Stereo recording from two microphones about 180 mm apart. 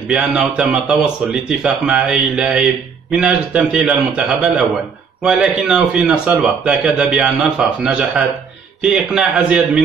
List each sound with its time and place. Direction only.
0.1 s speech: 5° right (ahead or behind)